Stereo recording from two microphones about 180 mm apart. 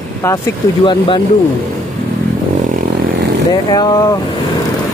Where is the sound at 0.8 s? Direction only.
25° left (ahead or behind).